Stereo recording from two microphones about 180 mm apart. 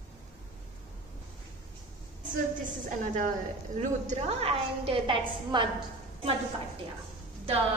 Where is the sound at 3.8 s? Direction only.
45° right (ahead or behind); by 5.7 s 25° right (ahead or behind).